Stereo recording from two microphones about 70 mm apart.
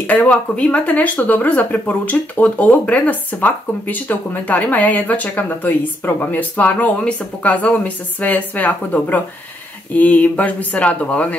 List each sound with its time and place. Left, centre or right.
0.0 s speech: left